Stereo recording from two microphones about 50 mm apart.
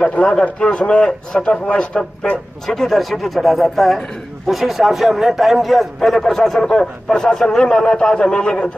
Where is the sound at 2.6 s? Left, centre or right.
Centre.